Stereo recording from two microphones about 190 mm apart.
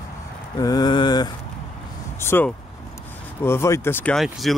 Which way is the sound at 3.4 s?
15° left (ahead or behind).